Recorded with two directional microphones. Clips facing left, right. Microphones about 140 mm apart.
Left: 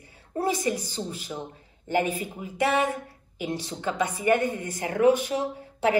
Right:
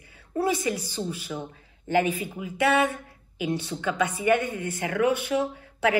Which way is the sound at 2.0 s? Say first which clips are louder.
Right 1 dB; 40° left (ahead or behind).